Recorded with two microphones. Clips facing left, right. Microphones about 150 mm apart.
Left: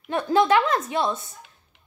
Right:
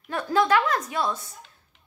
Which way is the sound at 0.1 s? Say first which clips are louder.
Left 3 dB; 20° left (ahead or behind).